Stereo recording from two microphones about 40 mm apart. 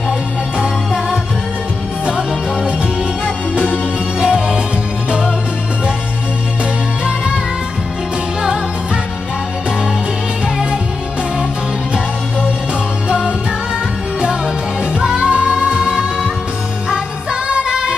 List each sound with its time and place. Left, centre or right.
0.6 s music: right
4.2 s music: right
15.0 s music: right